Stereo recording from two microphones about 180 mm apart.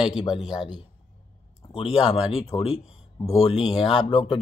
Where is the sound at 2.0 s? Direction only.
35° left (ahead or behind).